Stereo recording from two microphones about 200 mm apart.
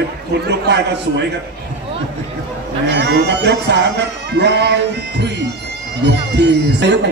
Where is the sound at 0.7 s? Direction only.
60° right (ahead or behind).